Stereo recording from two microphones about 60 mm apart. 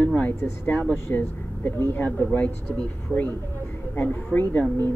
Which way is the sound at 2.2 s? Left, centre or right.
Left.